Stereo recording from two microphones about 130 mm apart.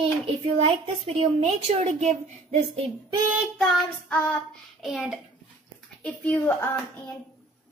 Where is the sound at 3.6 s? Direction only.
5° left (ahead or behind).